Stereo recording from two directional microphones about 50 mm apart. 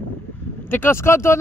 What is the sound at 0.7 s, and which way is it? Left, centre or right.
Speech, left.